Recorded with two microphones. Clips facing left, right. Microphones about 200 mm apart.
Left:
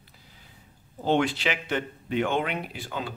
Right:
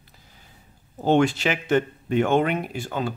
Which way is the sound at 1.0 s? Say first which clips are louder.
Right 5 dB; 45° right (ahead or behind).